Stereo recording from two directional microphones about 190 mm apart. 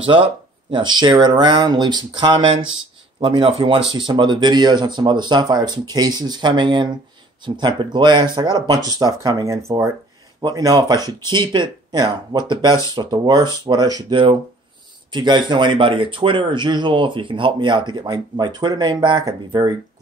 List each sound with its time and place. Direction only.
0.7 s speech: 25° right (ahead or behind)